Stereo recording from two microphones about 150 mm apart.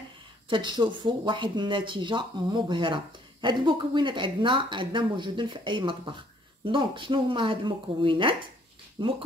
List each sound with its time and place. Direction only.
0.5 s speech: 30° right (ahead or behind)